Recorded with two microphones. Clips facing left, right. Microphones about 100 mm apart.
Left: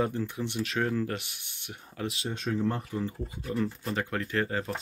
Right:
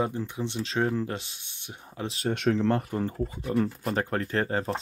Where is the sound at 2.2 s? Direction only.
80° right.